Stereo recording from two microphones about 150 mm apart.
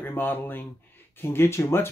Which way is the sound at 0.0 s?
15° left (ahead or behind).